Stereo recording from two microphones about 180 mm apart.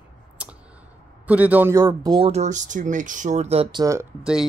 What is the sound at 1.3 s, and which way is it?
Speech, 10° right (ahead or behind).